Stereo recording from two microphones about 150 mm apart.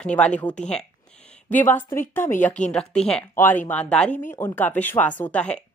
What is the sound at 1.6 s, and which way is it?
Speech, 60° left (ahead or behind).